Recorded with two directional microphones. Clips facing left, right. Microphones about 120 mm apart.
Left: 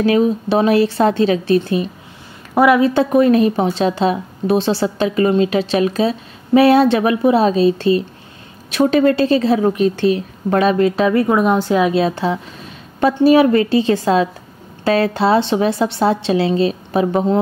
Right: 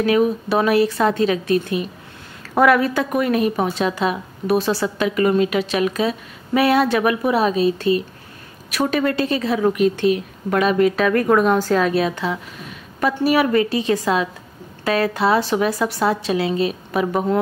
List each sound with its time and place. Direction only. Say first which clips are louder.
0.0 s a woman's voice: left 3 dB; 30° left (ahead or behind)
2.5 s a woman's voice: left 2 dB; 10° left (ahead or behind)
2.8 s a woman's voice: left 7 dB; 30° left (ahead or behind)
11.2 s a woman's voice: left 1 dB; 10° left (ahead or behind)
11.9 s a woman's voice: left 4 dB; 30° left (ahead or behind)